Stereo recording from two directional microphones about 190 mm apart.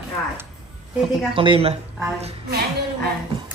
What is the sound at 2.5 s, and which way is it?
Music, 55° right (ahead or behind).